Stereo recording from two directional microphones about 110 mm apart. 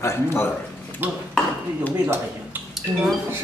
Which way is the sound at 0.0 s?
25° left (ahead or behind).